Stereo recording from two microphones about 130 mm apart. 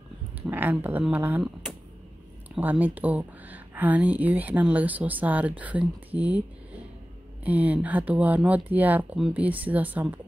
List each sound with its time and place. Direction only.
0.5 s speech: 15° right (ahead or behind)
2.5 s speech: 15° right (ahead or behind)
7.4 s speech: 10° right (ahead or behind)